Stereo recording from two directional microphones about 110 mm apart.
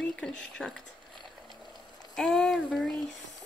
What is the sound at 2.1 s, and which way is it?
Speech, 5° left (ahead or behind).